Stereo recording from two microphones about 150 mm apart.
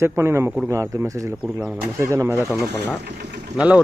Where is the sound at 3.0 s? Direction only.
90° right.